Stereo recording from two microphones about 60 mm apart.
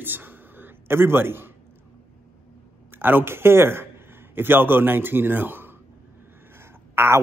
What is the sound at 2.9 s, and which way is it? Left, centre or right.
A man's voice, right.